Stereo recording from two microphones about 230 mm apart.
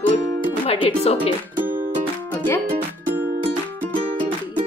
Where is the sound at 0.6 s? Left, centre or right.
Left.